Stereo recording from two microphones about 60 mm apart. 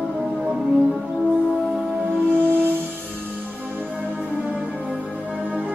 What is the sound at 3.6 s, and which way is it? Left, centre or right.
Music, right.